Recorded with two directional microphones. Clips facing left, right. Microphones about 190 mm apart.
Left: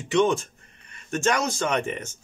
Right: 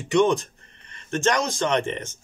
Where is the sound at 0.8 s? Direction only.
10° left (ahead or behind).